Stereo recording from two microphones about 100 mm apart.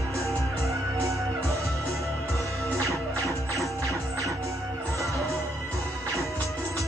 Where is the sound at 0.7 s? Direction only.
30° right (ahead or behind).